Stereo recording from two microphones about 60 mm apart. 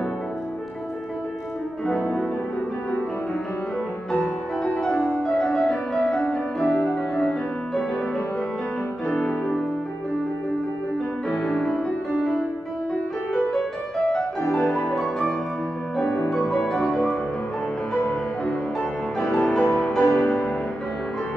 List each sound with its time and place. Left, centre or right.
4.7 s music: centre
11.2 s piano: centre
14.1 s music: centre
16.2 s music: centre
16.4 s music: centre
17.9 s music: left
19.1 s music: centre